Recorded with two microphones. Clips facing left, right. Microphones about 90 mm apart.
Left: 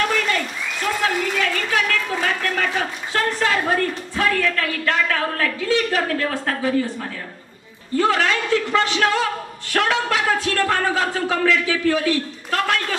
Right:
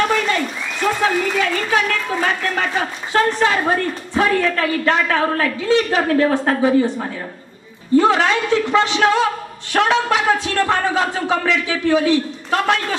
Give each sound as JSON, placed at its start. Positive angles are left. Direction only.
{"t": 0.8, "sound": "speech", "side_deg": -25}